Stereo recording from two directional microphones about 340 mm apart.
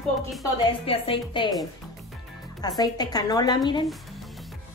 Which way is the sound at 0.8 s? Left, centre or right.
Centre.